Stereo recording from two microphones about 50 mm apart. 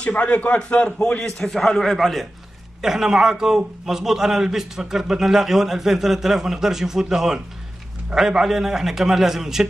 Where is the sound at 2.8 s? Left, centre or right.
Centre.